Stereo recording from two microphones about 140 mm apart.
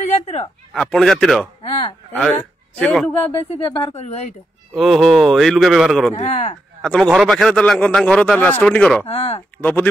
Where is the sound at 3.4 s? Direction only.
45° left (ahead or behind).